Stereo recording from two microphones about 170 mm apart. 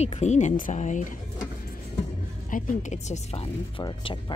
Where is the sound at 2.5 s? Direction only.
50° left (ahead or behind); by 4.3 s 25° left (ahead or behind).